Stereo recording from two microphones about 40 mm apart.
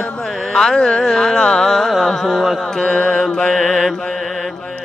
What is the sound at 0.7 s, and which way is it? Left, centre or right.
Mantra, left.